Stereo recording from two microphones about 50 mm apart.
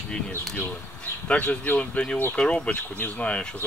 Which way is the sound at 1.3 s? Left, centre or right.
Left.